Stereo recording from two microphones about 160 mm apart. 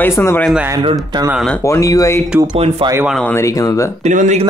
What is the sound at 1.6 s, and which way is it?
Speech, 20° left (ahead or behind).